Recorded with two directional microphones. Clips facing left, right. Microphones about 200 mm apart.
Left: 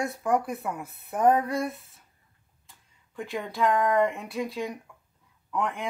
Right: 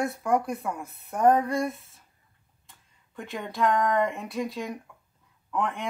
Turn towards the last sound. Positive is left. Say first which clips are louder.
# even
turn(degrees=0)  # may be behind; listen again after turning